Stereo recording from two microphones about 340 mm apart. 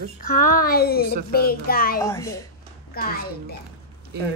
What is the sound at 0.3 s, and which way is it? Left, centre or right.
Speech, left.